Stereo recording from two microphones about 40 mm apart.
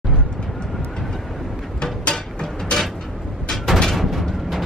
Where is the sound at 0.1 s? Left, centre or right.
Right.